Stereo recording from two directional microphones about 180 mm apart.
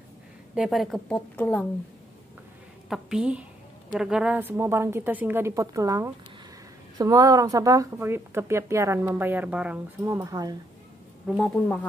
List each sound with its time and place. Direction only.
0.6 s a woman's voice: centre (ahead or behind)
2.9 s a woman's voice: 5° right (ahead or behind); by 10.6 s 20° right (ahead or behind)
11.2 s a woman's voice: 5° left (ahead or behind)